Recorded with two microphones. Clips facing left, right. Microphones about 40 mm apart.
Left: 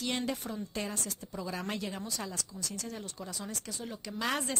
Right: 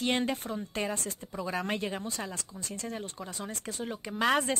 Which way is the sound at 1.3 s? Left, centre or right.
Centre.